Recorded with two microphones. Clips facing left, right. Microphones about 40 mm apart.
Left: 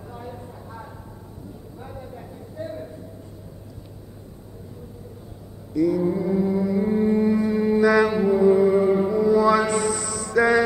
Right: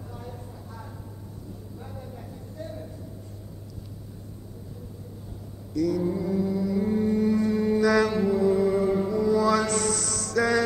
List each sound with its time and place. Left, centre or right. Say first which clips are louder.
0.1 s clip-clop: left 6 dB; centre
1.8 s a sound: left 5 dB; centre
5.8 s mantra: left 4 dB; centre